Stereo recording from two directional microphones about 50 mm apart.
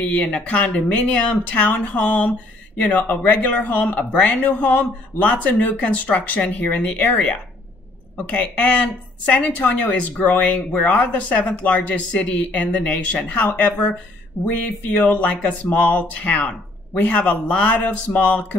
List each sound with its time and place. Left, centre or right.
0.0 s speech: left
14.9 s speech: left